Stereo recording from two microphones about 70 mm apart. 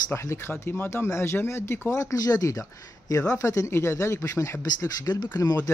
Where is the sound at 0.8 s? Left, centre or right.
Left.